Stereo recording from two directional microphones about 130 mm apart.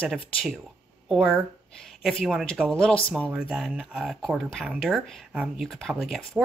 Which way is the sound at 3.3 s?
5° right (ahead or behind).